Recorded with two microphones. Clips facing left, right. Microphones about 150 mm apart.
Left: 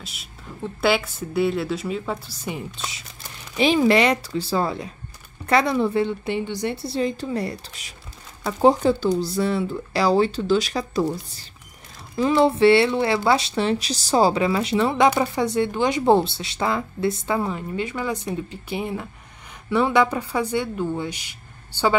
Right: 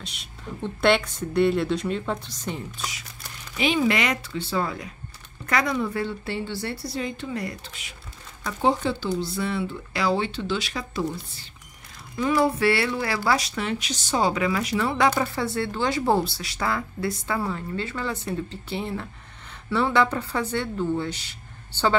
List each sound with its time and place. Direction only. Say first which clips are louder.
0.0 s a woman's voice: right 2 dB; 5° left (ahead or behind)
3.5 s speech: left 5 dB; 35° left (ahead or behind)
6.0 s speech: left 4 dB; 20° left (ahead or behind); by 11.4 s 40° left (ahead or behind)
12.2 s speech: left 5 dB; 25° left (ahead or behind)